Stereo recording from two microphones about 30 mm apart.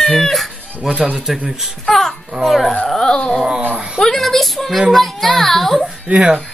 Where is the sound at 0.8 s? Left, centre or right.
Right.